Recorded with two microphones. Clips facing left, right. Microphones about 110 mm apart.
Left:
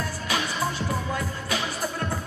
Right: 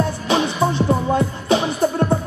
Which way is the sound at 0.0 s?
25° right (ahead or behind).